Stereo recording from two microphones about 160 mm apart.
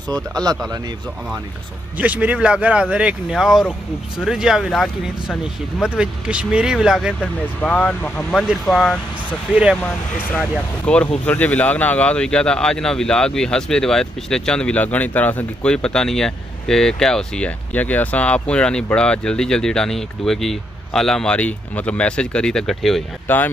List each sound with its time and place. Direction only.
0.1 s speech: 25° right (ahead or behind)
2.0 s speech: 10° right (ahead or behind)
7.2 s speech: 10° left (ahead or behind)
23.2 s speech: 10° left (ahead or behind)